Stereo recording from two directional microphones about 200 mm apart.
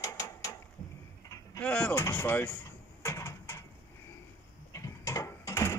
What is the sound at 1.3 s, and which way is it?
Speech, 10° left (ahead or behind).